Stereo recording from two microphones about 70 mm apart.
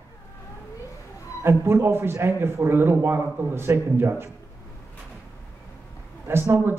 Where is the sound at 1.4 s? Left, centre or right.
Right.